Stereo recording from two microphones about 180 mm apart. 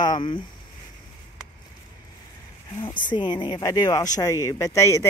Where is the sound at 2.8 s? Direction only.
25° left (ahead or behind).